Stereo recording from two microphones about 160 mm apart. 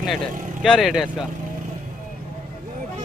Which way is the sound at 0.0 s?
Centre (ahead or behind).